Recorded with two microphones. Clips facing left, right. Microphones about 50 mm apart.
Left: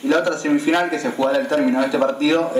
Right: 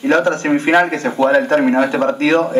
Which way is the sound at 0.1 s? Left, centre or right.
Right.